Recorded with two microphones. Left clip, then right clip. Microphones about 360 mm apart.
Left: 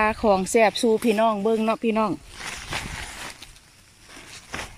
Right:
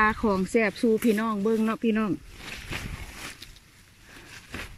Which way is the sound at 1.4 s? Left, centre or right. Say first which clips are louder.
Left 3 dB; left.